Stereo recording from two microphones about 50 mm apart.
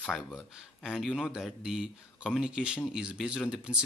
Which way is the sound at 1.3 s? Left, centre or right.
Centre.